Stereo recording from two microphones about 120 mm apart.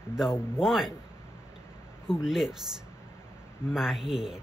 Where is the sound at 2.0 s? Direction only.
5° right (ahead or behind).